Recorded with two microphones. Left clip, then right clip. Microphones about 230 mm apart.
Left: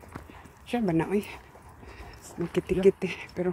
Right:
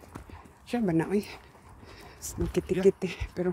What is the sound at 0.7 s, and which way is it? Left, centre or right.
Speech, centre.